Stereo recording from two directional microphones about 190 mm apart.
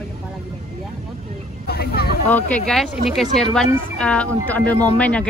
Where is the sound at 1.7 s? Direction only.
55° left (ahead or behind).